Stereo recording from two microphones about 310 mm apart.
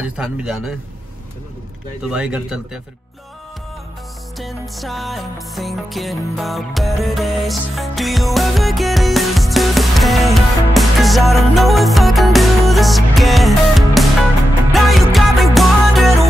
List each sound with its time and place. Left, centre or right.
0.0 s speech: centre
2.0 s speech: centre
4.4 s music: centre